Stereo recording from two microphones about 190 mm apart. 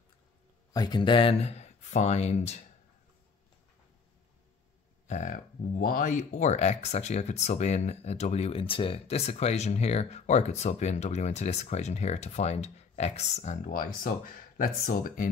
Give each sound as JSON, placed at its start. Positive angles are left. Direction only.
{"t": 0.7, "sound": "speech", "side_deg": 25}
{"t": 5.0, "sound": "speech", "side_deg": 40}